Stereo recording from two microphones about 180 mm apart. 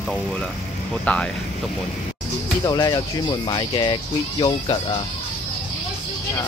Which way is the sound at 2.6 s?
20° left (ahead or behind).